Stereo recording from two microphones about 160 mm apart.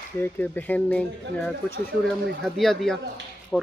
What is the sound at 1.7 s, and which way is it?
Speech, 90° right.